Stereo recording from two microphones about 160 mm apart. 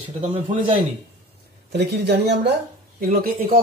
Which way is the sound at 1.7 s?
90° right.